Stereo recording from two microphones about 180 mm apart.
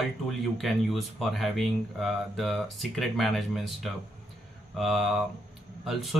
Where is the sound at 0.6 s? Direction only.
Centre (ahead or behind).